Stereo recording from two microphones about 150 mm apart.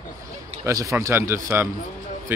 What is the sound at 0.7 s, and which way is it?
Speech, 20° right (ahead or behind).